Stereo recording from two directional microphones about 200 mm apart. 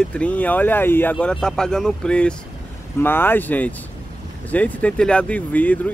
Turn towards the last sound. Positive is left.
turn(degrees=10)  # may be behind; listen again after turning